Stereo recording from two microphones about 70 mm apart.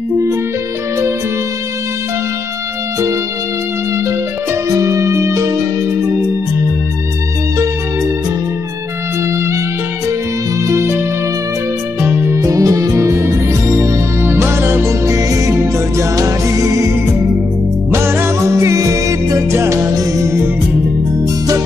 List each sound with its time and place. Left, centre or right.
4.7 s music: right
10.7 s music: right
12.4 s music: right
17.9 s music: right